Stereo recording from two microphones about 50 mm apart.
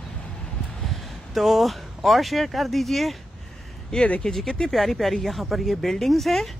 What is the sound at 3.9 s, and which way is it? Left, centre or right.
Speech, centre.